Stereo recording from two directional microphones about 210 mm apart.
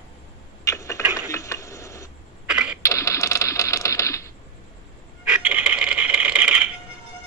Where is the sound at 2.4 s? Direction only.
5° right (ahead or behind).